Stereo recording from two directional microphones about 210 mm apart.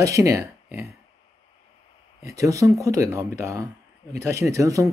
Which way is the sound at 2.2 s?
15° right (ahead or behind).